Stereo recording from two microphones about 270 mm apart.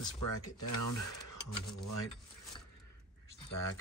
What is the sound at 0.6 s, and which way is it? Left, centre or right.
Speech, left.